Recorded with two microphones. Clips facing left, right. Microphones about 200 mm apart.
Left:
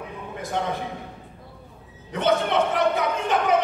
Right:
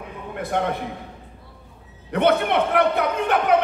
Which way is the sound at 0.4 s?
60° right (ahead or behind).